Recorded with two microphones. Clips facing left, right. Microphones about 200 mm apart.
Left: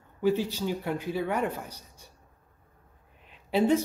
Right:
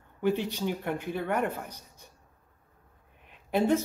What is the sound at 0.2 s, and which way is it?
Speech, 60° right (ahead or behind).